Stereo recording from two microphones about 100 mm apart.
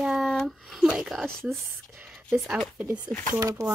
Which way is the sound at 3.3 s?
35° right (ahead or behind).